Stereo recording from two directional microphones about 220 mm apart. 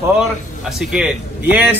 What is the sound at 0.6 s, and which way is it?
A man's voice, centre (ahead or behind).